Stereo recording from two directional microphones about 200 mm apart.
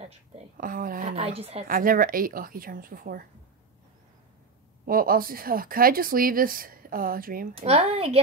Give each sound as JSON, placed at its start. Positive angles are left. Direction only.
{"t": 0.6, "sound": "speech", "side_deg": -45}
{"t": 1.1, "sound": "a woman's voice", "side_deg": -30}
{"t": 1.7, "sound": "speech", "side_deg": -45}
{"t": 4.8, "sound": "speech", "side_deg": -45}
{"t": 7.5, "sound": "a woman's voice", "side_deg": -30}